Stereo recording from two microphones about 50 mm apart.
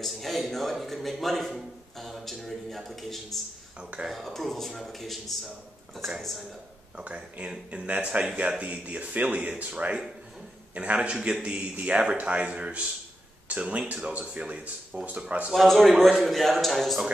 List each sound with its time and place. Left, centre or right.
0.0 s a man's voice: centre
7.0 s speech: right
15.5 s a man's voice: centre